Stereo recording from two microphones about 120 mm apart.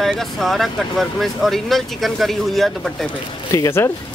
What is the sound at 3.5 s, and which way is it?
Speech, 20° left (ahead or behind).